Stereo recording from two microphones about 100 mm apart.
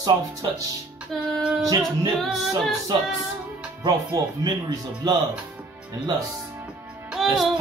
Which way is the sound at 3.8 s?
45° right (ahead or behind).